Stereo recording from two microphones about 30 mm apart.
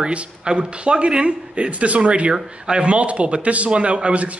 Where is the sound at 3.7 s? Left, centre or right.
Right.